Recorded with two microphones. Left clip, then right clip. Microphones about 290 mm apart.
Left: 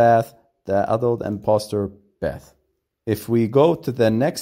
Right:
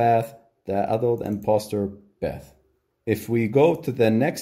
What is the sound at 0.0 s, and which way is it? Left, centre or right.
Speech, left.